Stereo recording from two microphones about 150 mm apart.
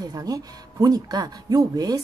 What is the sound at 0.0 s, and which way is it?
Speech, 25° right (ahead or behind).